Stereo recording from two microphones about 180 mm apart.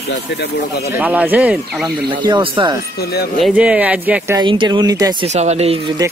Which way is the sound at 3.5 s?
10° right (ahead or behind).